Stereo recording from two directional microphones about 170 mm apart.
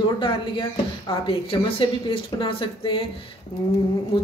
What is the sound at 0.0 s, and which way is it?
A woman's voice, 30° left (ahead or behind).